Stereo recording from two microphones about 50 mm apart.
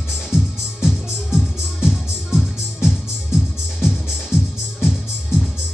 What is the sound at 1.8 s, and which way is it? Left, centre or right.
Music, centre.